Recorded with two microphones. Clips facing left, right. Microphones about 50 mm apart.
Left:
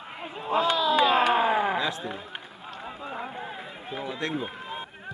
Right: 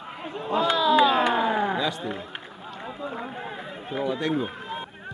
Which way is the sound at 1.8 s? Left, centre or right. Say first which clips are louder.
Right 1 dB; centre.